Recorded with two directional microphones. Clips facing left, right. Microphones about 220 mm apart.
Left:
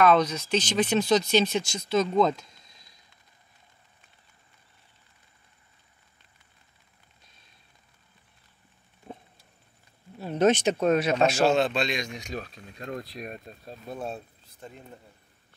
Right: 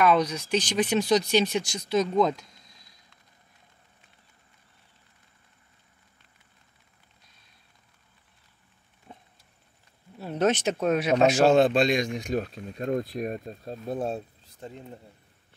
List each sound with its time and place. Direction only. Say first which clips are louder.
0.0 s speech: left 1 dB; 10° right (ahead or behind)
10.1 s speech: left 2 dB; 5° right (ahead or behind); by 11.4 s 20° right (ahead or behind)
11.4 s speech: right 4 dB; 50° right (ahead or behind)
13.3 s speech: right 7 dB; 35° right (ahead or behind)